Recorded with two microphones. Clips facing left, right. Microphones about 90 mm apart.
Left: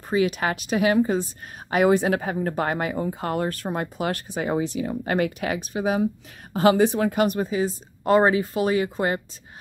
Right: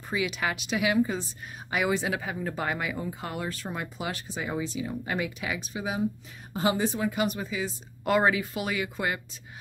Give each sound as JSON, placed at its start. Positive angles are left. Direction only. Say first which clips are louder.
{"t": 0.1, "sound": "speech", "louder": "left 7 dB", "side_deg": 45}
{"t": 6.5, "sound": "speech", "louder": "left 8 dB", "side_deg": 70}